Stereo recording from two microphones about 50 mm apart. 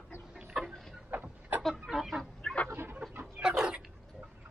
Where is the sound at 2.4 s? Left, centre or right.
Centre.